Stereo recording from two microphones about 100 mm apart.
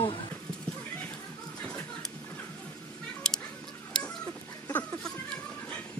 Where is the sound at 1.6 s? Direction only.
10° left (ahead or behind).